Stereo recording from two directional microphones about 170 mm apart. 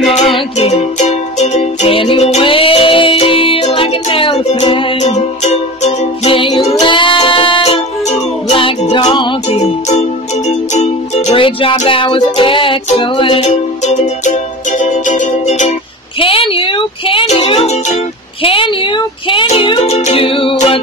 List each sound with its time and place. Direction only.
0.6 s music: 40° left (ahead or behind)
9.6 s music: 40° left (ahead or behind)
16.2 s music: 30° left (ahead or behind)